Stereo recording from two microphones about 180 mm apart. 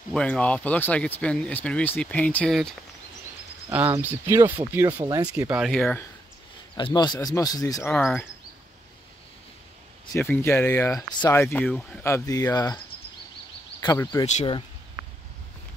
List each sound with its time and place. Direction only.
0.1 s speech: 5° left (ahead or behind)
3.7 s speech: 10° right (ahead or behind)
5.7 s speech: centre (ahead or behind)
6.8 s speech: 25° left (ahead or behind)
7.9 s speech: 5° left (ahead or behind)
10.1 s speech: 10° left (ahead or behind)
14.2 s speech: 35° left (ahead or behind)